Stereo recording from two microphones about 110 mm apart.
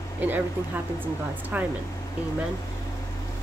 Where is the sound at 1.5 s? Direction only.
15° right (ahead or behind).